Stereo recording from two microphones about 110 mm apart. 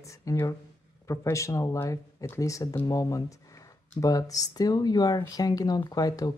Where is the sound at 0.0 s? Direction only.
30° left (ahead or behind).